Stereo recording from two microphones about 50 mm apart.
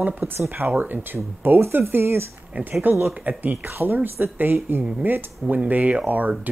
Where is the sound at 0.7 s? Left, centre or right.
Right.